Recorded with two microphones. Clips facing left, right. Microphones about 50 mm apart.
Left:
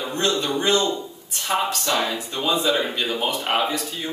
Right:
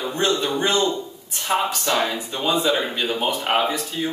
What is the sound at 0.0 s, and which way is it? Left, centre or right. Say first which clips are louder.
A man's voice: right 1 dB; centre.